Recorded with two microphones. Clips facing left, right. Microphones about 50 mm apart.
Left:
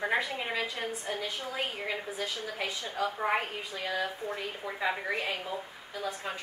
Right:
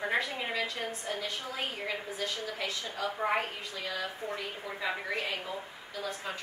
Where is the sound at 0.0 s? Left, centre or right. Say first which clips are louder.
Left 1 dB; centre.